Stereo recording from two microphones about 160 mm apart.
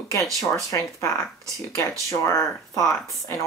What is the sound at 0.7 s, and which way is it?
Speech, 20° left (ahead or behind).